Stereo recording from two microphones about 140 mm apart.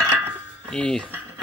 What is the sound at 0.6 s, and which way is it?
Speech, 5° left (ahead or behind).